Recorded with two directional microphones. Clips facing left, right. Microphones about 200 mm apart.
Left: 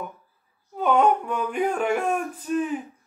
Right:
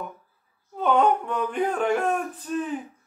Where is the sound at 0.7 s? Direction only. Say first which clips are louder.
Left 1 dB; 5° left (ahead or behind).